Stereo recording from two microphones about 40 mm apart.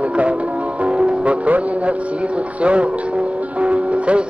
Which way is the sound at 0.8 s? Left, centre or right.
Right.